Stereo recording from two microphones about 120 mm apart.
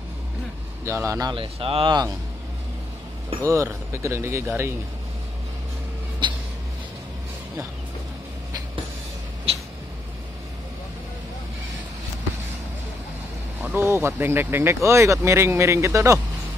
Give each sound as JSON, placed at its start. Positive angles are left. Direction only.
{"t": 0.8, "sound": "speech", "side_deg": -25}
{"t": 1.3, "sound": "speech", "side_deg": -45}
{"t": 3.4, "sound": "speech", "side_deg": -25}
{"t": 6.2, "sound": "a sound", "side_deg": -40}
{"t": 9.5, "sound": "a sound", "side_deg": -50}
{"t": 13.6, "sound": "speech", "side_deg": -15}